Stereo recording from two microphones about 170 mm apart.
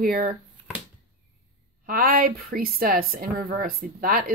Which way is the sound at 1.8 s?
55° right (ahead or behind).